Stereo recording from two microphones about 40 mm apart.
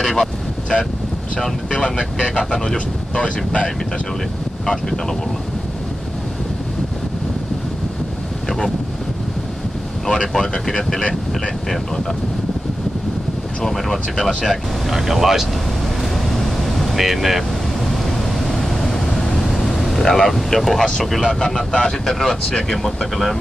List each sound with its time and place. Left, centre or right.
0.0 s speech: centre
8.5 s wind noise: centre
10.0 s speech: centre
11.0 s speech: left
13.6 s speech: centre
14.9 s speech: centre
16.0 s vehicle: centre
21.0 s speech: centre
21.3 s speech: centre